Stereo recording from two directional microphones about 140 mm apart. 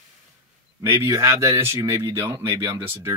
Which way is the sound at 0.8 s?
20° right (ahead or behind).